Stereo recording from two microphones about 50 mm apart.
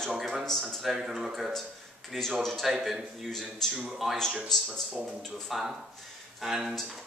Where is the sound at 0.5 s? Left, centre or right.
Centre.